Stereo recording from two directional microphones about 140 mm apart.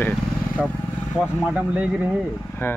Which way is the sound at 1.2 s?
5° right (ahead or behind).